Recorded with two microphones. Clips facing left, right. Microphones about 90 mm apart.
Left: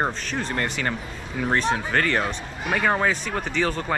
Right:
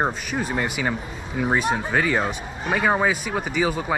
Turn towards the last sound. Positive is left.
turn(degrees=-10)  # may be behind; listen again after turning